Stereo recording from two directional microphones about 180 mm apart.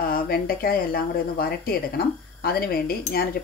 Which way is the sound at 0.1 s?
55° left (ahead or behind).